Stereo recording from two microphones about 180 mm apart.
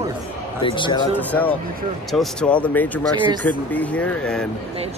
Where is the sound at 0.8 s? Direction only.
25° left (ahead or behind).